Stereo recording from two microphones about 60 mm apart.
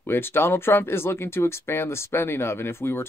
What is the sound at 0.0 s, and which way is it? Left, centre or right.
Speech, left.